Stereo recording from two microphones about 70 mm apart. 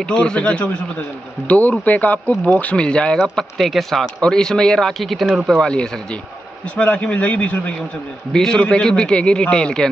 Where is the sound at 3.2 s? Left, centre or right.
Centre.